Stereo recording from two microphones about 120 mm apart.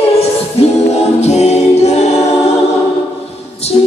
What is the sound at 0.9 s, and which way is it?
Music, 65° left (ahead or behind).